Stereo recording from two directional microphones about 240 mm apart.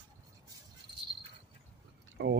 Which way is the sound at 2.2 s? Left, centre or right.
Right.